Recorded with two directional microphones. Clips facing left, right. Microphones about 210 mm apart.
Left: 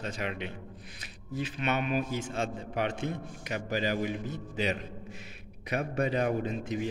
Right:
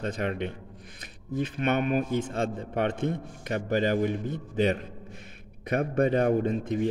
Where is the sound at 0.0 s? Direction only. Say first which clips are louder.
Right 5 dB; 50° right (ahead or behind).